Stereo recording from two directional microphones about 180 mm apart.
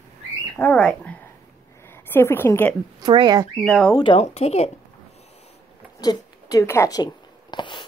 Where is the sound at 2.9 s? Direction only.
25° right (ahead or behind).